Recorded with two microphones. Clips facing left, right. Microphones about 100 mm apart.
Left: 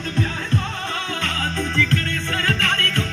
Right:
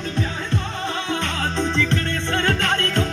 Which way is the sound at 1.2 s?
25° right (ahead or behind).